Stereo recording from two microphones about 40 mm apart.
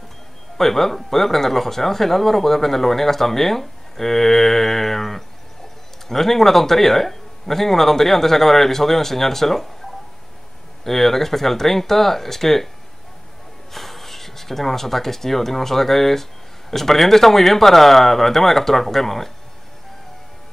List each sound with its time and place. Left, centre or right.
0.6 s speech: centre
10.8 s speech: centre
13.7 s speech: centre